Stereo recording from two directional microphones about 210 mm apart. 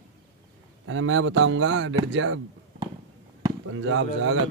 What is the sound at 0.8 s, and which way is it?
Speech, 75° right (ahead or behind).